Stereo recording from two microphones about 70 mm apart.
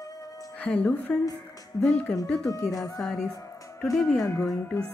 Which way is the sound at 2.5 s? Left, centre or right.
Left.